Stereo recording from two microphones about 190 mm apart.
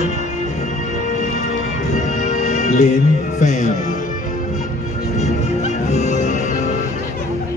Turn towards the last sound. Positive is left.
turn(degrees=40)  # may be behind; listen again after turning